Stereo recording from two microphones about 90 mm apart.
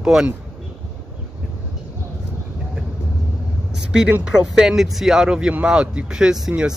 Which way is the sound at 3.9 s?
10° right (ahead or behind).